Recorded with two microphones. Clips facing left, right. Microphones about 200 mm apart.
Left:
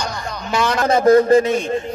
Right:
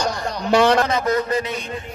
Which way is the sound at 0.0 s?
35° right (ahead or behind).